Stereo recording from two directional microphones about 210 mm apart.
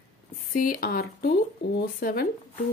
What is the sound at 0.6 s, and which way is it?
Speech, 45° left (ahead or behind).